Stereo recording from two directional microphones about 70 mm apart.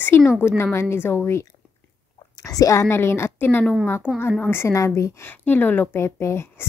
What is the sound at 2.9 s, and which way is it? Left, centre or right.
A woman's voice, left.